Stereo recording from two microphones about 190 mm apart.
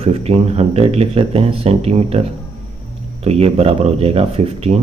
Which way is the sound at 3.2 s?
35° right (ahead or behind).